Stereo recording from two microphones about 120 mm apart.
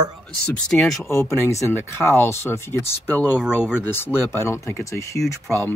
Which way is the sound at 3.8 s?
20° left (ahead or behind).